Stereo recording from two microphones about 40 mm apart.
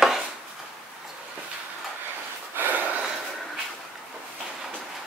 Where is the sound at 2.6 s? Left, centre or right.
Right.